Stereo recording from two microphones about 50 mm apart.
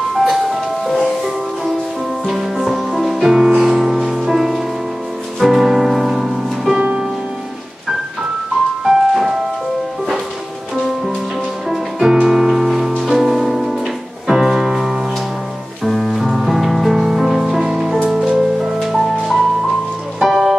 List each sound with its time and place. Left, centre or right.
0.1 s ice cream truck: centre
1.0 s music: centre
6.8 s music: right
8.8 s music: centre
12.0 s music: centre